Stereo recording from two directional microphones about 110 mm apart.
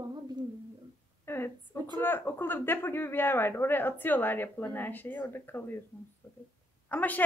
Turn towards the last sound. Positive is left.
turn(degrees=15)  # may be behind; listen again after turning